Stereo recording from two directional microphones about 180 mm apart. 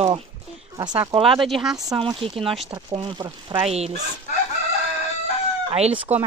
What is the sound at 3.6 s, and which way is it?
Speech, 35° right (ahead or behind).